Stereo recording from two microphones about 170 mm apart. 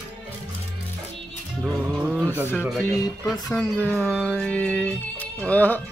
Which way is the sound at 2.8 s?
20° left (ahead or behind).